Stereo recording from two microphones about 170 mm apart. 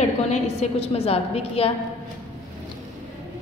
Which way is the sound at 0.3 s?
35° left (ahead or behind).